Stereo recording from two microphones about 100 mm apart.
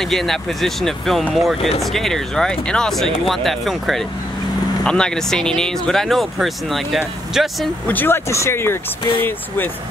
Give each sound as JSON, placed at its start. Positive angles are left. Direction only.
{"t": 0.0, "sound": "speech", "side_deg": 5}
{"t": 7.8, "sound": "speech", "side_deg": 20}